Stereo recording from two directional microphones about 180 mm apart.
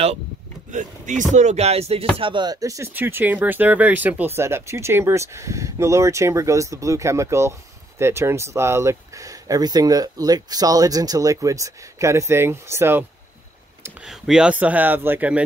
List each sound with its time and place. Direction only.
0.7 s speech: 45° right (ahead or behind); by 13.0 s 15° right (ahead or behind)
14.0 s speech: centre (ahead or behind)